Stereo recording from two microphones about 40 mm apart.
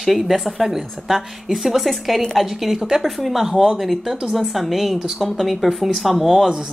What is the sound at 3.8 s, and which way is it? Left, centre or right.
A woman's voice, centre.